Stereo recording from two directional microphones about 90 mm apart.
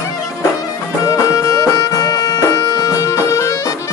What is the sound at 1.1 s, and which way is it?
Music, 35° left (ahead or behind).